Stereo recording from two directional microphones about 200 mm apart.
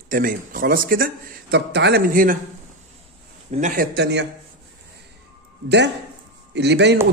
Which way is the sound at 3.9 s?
60° right (ahead or behind).